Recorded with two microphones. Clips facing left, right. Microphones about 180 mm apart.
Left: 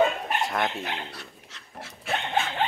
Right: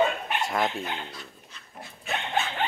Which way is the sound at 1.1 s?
80° left.